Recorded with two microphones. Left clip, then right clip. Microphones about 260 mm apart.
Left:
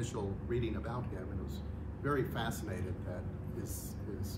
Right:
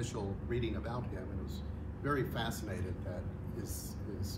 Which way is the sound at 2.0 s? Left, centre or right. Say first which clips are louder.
Even; centre.